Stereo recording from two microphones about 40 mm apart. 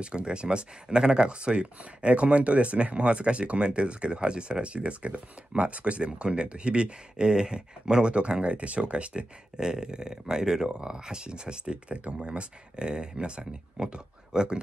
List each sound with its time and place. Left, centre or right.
0.0 s speech: right
9.6 s speech: centre